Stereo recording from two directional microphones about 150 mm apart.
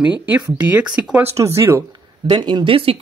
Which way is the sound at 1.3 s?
20° right (ahead or behind).